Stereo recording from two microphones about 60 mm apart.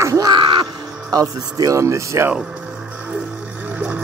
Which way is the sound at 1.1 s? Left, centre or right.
Right.